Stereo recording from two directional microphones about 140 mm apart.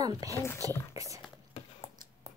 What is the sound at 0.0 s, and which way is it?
A woman's voice, 25° right (ahead or behind).